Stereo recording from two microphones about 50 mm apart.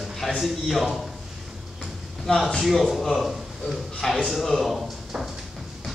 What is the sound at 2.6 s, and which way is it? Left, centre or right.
A man's voice, centre.